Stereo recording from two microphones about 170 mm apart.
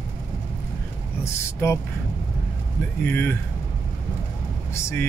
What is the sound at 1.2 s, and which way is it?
Speech, 15° left (ahead or behind).